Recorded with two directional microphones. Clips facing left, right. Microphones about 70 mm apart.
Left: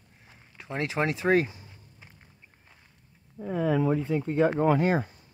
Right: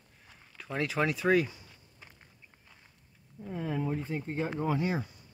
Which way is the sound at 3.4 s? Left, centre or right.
Left.